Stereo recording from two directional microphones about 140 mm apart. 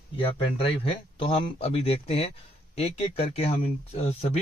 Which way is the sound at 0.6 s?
40° left (ahead or behind).